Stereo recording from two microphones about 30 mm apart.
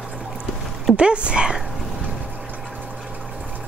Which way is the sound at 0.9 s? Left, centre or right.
Right.